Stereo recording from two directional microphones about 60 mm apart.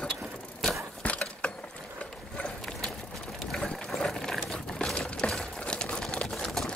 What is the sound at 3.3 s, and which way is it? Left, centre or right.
Ratchet, centre.